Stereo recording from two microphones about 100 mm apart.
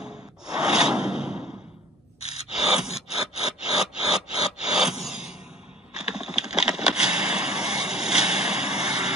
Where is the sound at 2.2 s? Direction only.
90° left.